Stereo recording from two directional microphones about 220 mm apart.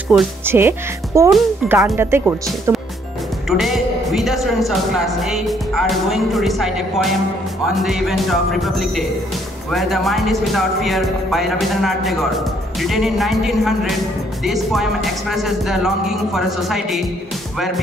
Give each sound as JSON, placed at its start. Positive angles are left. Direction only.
{"t": 0.1, "sound": "speech", "side_deg": -5}
{"t": 1.3, "sound": "speech", "side_deg": 0}
{"t": 3.4, "sound": "speech", "side_deg": 0}